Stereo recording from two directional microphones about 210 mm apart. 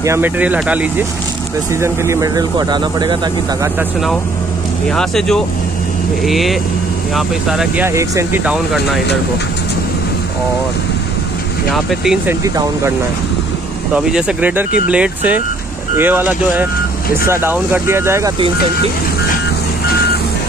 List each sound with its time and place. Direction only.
0.0 s speech: 10° right (ahead or behind)
4.9 s speech: centre (ahead or behind)
11.7 s speech: centre (ahead or behind)
13.9 s speech: 5° right (ahead or behind)